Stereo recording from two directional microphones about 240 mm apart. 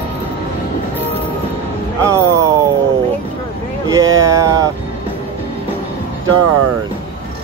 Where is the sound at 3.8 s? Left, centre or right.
Centre.